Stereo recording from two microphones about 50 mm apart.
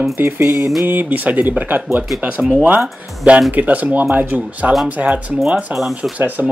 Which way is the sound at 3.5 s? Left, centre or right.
Right.